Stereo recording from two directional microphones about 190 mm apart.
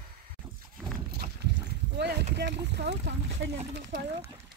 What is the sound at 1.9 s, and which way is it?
Speech, 60° right (ahead or behind).